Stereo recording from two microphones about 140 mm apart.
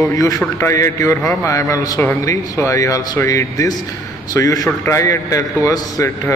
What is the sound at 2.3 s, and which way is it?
A man's voice, 25° left (ahead or behind).